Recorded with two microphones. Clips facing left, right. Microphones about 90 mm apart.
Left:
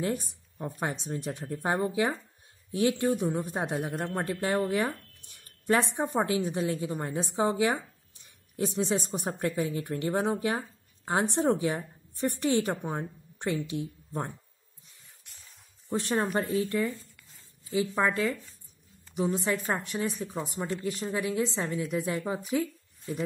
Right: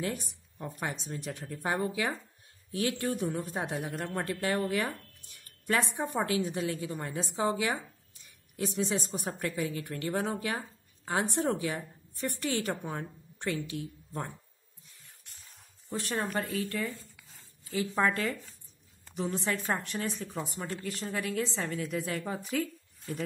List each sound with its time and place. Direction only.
0.0 s a woman's voice: 25° left (ahead or behind)
15.9 s a woman's voice: 25° left (ahead or behind)